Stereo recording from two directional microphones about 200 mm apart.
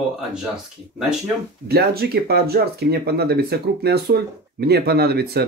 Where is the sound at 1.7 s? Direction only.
50° right (ahead or behind).